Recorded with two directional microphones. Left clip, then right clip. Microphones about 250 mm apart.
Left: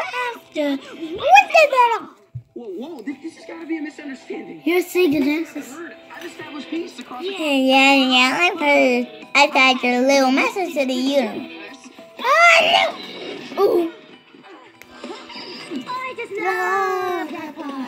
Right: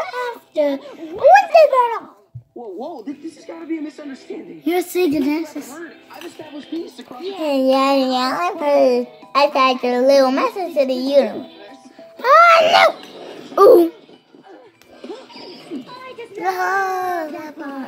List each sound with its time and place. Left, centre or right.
0.1 s a sound: centre
4.6 s a woman's voice: right
5.1 s speech: centre
6.5 s speech: left
7.4 s a child's voice: centre
13.2 s dog: left
13.6 s music: right
15.3 s music: left
16.4 s a child's voice: centre